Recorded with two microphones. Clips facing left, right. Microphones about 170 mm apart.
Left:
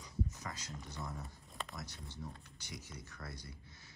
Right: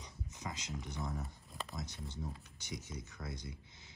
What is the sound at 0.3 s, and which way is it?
Speech, 20° right (ahead or behind).